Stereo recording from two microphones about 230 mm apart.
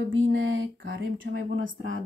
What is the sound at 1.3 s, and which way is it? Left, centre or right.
Speech, right.